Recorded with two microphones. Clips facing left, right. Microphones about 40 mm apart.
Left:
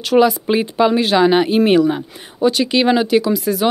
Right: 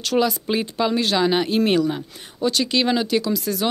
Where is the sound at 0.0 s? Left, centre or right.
Centre.